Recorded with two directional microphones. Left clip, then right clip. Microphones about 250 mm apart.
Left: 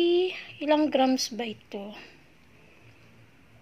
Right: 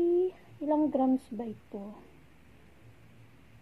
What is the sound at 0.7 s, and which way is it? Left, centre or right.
A woman's voice, left.